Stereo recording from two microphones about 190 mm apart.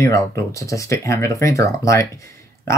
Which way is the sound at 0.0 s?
15° left (ahead or behind).